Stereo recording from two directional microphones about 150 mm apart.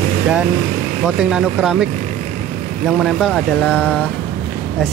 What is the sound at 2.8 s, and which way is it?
Speech, centre (ahead or behind).